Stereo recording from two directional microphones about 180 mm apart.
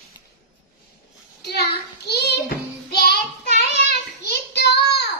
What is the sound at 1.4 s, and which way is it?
Child singing, 65° left (ahead or behind).